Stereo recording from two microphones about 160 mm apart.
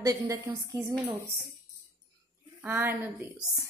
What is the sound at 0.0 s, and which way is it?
Speech, 20° right (ahead or behind).